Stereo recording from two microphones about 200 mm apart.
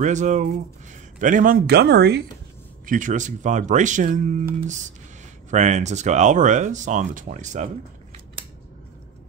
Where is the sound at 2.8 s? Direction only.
40° right (ahead or behind).